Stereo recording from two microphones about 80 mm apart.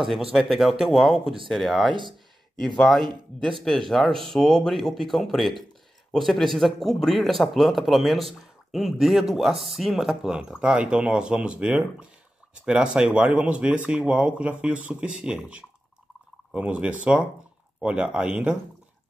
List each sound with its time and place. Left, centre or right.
0.0 s a man's voice: centre
1.9 s speech: right
2.8 s a man's voice: centre